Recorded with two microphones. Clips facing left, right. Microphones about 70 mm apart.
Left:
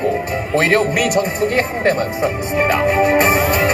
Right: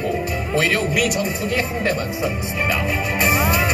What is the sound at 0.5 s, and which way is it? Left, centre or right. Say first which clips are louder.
A man's voice: left 5 dB; left.